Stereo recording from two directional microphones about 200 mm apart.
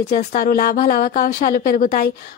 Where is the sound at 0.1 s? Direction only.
45° left (ahead or behind).